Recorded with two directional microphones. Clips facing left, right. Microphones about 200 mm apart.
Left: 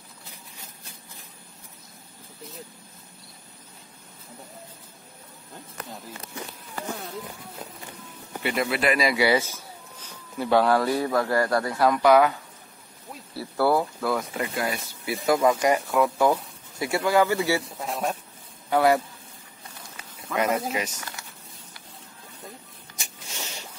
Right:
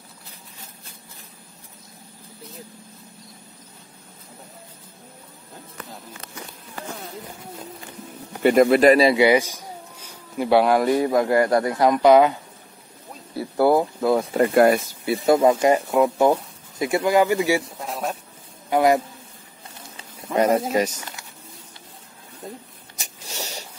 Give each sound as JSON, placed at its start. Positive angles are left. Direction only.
{"t": 8.4, "sound": "speech", "side_deg": -45}
{"t": 8.9, "sound": "speech", "side_deg": -25}
{"t": 14.3, "sound": "speech", "side_deg": -50}
{"t": 15.2, "sound": "speech", "side_deg": -25}
{"t": 17.7, "sound": "a sound", "side_deg": 0}
{"t": 18.7, "sound": "a man's voice", "side_deg": -20}
{"t": 20.0, "sound": "speech", "side_deg": -30}
{"t": 22.9, "sound": "a sound", "side_deg": -35}